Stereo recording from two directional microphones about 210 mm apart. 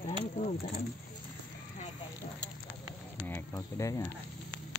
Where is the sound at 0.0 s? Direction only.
30° left (ahead or behind).